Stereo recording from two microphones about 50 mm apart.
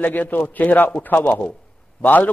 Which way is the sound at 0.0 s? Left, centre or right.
Left.